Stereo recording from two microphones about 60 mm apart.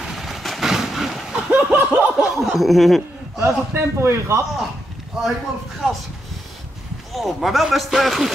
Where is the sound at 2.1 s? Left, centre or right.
Centre.